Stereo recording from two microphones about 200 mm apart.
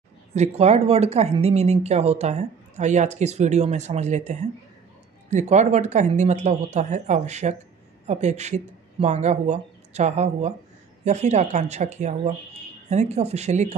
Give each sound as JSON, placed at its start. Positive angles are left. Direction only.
{"t": 0.3, "sound": "a woman's voice", "side_deg": -35}
{"t": 5.3, "sound": "a woman's voice", "side_deg": -35}